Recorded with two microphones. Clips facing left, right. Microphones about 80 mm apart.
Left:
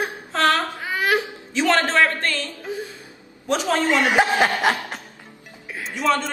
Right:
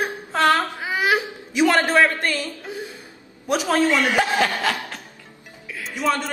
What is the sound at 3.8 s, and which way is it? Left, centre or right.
A woman's voice, left.